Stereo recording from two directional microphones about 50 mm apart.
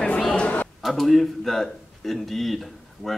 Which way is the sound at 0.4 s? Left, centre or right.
Left.